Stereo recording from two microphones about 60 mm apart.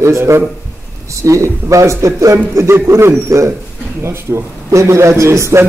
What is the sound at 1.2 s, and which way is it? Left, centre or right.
A man's voice, right.